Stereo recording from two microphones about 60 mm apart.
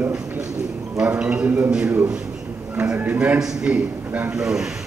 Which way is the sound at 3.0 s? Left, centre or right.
Right.